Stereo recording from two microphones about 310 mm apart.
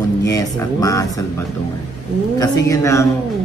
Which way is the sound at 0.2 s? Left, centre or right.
Centre.